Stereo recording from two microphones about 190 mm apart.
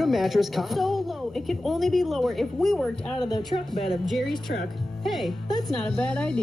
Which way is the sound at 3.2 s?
20° left (ahead or behind).